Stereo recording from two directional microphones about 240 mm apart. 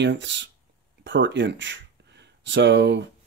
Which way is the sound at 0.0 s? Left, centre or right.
Right.